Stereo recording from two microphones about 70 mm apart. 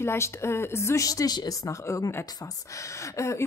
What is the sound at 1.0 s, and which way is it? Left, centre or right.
Speech, left.